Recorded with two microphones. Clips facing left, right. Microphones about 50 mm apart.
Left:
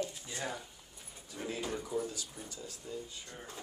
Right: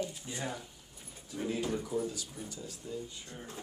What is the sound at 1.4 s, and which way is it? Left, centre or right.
Speech, centre.